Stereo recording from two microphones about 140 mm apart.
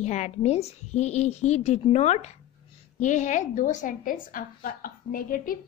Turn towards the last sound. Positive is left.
turn(degrees=90)